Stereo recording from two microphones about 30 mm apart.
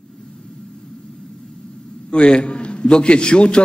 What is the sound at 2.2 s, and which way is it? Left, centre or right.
A man's voice, left.